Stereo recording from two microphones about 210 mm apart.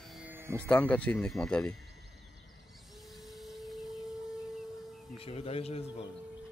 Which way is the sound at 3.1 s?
Centre (ahead or behind).